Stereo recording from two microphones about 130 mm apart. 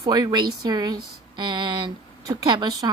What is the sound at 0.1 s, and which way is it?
Speech, 30° right (ahead or behind).